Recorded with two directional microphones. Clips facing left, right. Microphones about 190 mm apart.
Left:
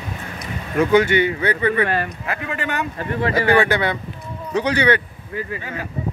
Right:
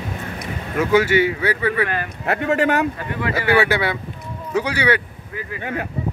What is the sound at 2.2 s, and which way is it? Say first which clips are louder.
Speech: right 8 dB; 60° right (ahead or behind).